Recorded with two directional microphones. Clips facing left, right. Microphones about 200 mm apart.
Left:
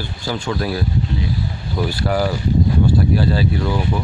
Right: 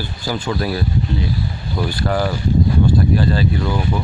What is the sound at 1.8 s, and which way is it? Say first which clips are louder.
Speech: left 1 dB; 10° left (ahead or behind).